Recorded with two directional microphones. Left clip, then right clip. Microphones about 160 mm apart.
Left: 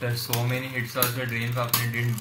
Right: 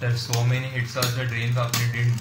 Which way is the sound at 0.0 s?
55° left (ahead or behind).